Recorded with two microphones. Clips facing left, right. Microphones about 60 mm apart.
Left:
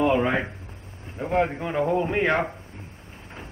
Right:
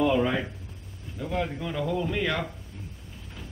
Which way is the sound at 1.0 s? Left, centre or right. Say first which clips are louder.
Left 7 dB; left.